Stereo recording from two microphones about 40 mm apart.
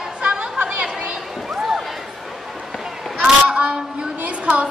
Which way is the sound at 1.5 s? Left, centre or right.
Centre.